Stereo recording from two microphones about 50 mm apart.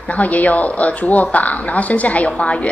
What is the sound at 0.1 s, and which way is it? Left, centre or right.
A woman's voice, left.